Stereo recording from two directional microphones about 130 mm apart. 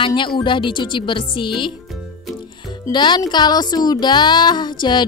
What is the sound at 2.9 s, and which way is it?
A woman's voice, 35° left (ahead or behind).